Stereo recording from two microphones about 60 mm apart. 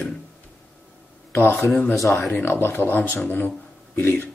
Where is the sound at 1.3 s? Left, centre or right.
Left.